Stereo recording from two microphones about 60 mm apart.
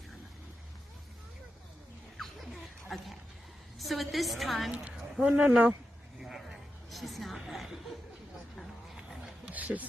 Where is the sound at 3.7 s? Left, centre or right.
Centre.